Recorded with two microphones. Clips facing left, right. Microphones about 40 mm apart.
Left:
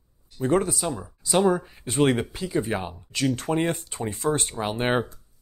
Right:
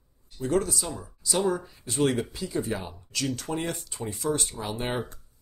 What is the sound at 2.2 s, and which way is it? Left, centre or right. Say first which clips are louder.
Speech: left 4 dB; left.